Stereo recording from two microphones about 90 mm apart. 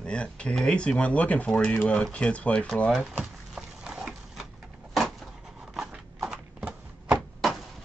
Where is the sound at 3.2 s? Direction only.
5° right (ahead or behind).